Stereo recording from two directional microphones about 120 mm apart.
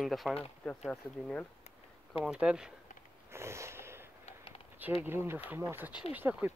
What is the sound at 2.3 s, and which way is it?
Speech, 5° right (ahead or behind).